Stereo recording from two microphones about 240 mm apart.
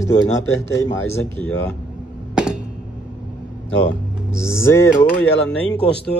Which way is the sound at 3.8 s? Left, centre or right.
Centre.